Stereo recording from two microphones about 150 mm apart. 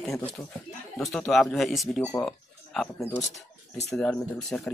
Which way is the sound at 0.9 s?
5° left (ahead or behind).